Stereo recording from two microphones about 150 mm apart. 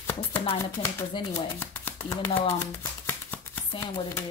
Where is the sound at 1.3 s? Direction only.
15° left (ahead or behind).